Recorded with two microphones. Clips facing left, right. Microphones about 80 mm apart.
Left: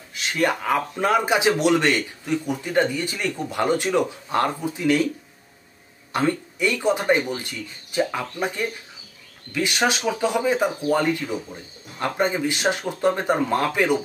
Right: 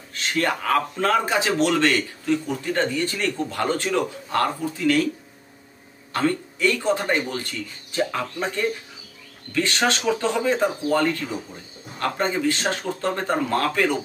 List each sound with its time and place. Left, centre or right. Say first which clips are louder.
0.1 s speech: left 1 dB; centre
6.1 s speech: even; centre